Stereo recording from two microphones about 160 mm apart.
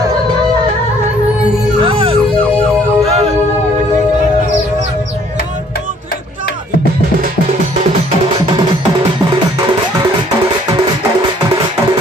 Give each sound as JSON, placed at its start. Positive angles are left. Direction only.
{"t": 1.8, "sound": "music", "side_deg": -35}